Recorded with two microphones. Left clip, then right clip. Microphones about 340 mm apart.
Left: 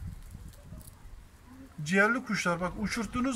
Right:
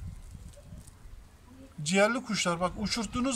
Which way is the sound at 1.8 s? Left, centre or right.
Centre.